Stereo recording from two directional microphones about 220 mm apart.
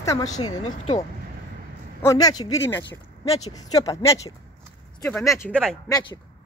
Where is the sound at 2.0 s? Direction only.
15° left (ahead or behind).